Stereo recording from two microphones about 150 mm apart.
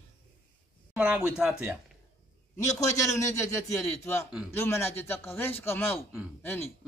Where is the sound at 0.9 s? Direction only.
10° right (ahead or behind).